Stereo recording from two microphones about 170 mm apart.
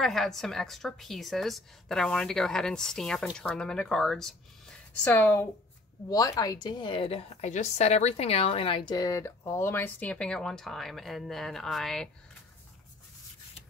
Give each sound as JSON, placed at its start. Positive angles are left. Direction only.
{"t": 0.0, "sound": "a woman's voice", "side_deg": 0}